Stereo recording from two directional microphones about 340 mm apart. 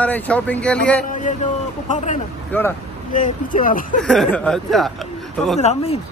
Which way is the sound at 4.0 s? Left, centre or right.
Centre.